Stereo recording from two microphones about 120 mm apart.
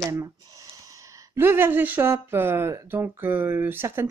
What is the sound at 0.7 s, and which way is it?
Speech, 30° right (ahead or behind).